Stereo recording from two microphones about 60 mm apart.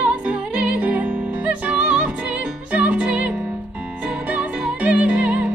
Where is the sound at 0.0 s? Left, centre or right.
Right.